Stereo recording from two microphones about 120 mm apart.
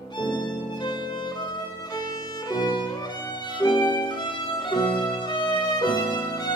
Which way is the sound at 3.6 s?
40° left (ahead or behind).